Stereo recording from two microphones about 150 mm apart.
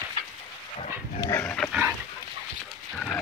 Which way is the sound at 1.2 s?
15° left (ahead or behind).